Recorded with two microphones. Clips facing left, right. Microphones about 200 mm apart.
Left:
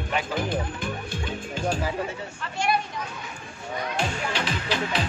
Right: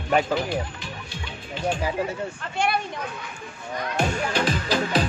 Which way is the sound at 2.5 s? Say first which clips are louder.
Even; 60° right (ahead or behind).